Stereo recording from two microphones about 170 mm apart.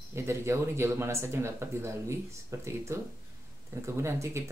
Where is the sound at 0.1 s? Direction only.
15° right (ahead or behind).